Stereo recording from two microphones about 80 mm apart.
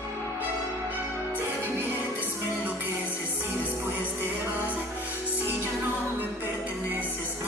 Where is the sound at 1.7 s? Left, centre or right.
Right.